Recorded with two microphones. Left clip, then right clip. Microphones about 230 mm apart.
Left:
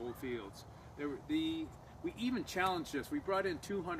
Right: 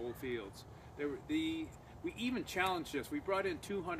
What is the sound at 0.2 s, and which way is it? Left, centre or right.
Speech, left.